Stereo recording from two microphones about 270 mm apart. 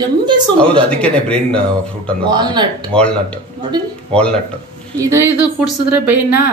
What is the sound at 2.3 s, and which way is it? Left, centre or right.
Speech, centre.